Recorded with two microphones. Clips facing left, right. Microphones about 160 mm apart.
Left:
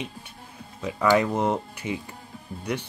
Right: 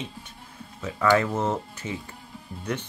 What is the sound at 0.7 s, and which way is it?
Speech, 15° left (ahead or behind).